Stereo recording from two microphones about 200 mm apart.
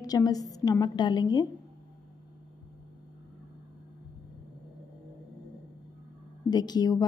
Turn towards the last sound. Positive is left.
turn(degrees=20)  # may be behind; listen again after turning